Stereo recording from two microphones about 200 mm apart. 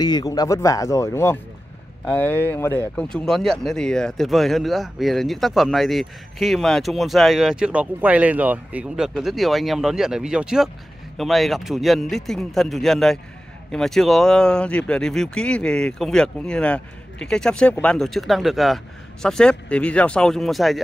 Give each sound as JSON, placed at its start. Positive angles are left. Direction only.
{"t": 0.0, "sound": "speech", "side_deg": 20}